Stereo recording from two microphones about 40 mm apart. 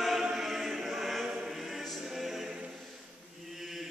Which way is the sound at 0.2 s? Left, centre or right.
Centre.